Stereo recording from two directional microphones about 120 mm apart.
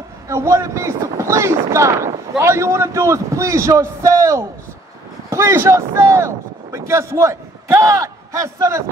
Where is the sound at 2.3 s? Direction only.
25° right (ahead or behind).